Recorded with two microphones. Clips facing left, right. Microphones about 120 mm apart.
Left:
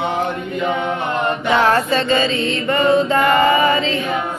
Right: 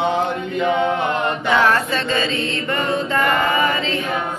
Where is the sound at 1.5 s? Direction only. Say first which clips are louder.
Left 1 dB; 40° left (ahead or behind).